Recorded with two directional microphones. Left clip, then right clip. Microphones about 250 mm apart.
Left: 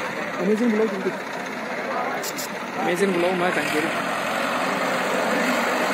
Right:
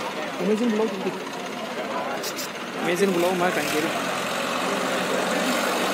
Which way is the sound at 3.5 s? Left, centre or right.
Right.